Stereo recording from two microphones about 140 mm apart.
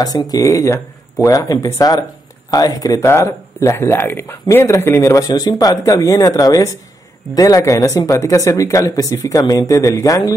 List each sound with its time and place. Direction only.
0.0 s speech: 25° left (ahead or behind)